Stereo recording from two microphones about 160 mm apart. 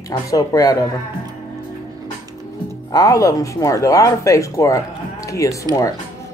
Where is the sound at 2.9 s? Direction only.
20° left (ahead or behind).